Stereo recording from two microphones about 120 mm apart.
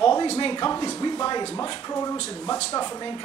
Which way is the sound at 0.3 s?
45° left (ahead or behind).